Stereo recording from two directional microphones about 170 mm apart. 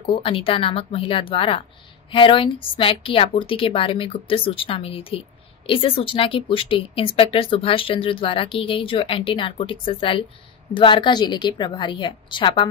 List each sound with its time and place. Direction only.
0.1 s a woman's voice: 30° left (ahead or behind)